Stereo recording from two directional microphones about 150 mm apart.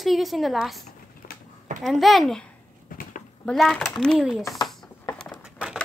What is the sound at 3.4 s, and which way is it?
A woman's voice, 5° left (ahead or behind).